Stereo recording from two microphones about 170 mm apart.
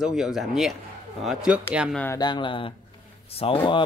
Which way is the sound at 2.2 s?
25° left (ahead or behind).